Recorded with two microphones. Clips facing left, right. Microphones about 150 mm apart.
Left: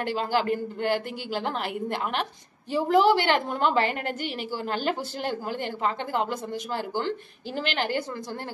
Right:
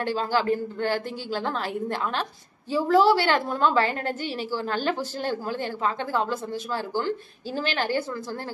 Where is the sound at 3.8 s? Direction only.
40° right (ahead or behind).